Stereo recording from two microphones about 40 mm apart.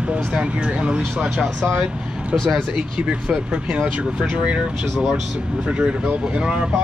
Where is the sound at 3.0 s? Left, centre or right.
Right.